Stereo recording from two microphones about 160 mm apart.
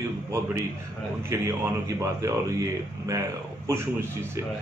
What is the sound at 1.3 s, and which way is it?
A man's voice, 20° right (ahead or behind).